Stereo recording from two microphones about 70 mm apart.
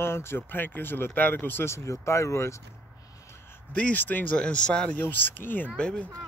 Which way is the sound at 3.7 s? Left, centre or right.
Left.